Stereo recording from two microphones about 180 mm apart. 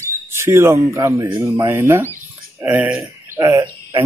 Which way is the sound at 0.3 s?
15° right (ahead or behind).